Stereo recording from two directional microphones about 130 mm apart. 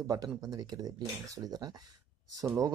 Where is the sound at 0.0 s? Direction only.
25° right (ahead or behind).